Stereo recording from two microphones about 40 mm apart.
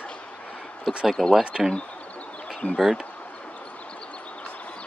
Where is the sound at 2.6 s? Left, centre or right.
Left.